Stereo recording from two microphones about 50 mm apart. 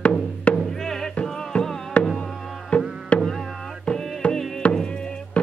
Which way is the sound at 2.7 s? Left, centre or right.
Left.